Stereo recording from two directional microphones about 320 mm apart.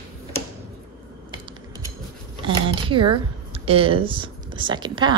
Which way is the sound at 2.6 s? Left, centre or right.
Centre.